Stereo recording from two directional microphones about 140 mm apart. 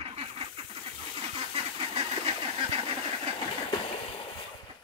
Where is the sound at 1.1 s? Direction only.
45° right (ahead or behind).